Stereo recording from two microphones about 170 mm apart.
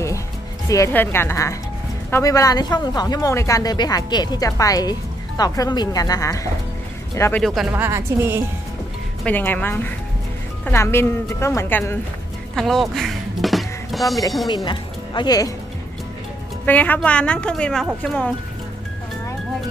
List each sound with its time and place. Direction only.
0.7 s speech: 20° left (ahead or behind)
7.4 s speech: centre (ahead or behind)
7.7 s speech: 15° right (ahead or behind)
9.2 s speech: 10° left (ahead or behind)
12.5 s music: centre (ahead or behind)
14.5 s speech: 25° left (ahead or behind)
16.6 s speech: 10° left (ahead or behind)